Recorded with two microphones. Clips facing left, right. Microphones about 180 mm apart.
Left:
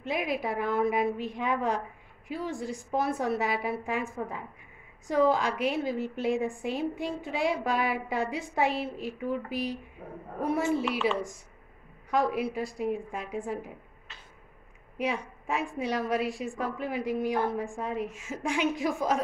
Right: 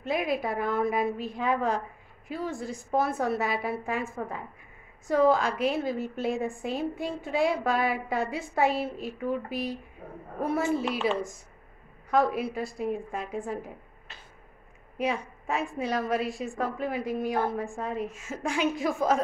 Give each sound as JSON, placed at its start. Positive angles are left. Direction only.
{"t": 0.0, "sound": "a woman's voice", "side_deg": 15}
{"t": 12.1, "sound": "a woman's voice", "side_deg": 15}
{"t": 15.0, "sound": "a woman's voice", "side_deg": 10}